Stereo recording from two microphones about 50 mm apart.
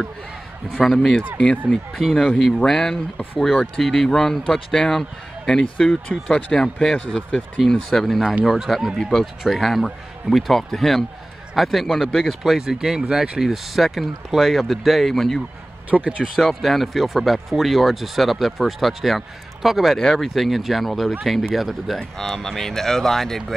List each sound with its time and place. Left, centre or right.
0.8 s speech: centre
1.7 s speech: centre
2.6 s speech: centre
7.9 s speech: centre
12.4 s speech: centre
15.9 s speech: right
16.3 s speech: centre
20.0 s speech: centre